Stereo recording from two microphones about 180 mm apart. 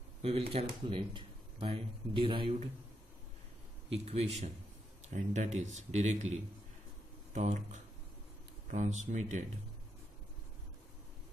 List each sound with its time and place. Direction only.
0.2 s speech: 35° right (ahead or behind)
3.9 s speech: 35° right (ahead or behind)
7.3 s speech: 40° right (ahead or behind)